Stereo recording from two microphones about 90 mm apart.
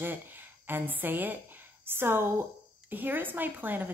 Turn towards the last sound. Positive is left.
turn(degrees=-20)  # may be behind; listen again after turning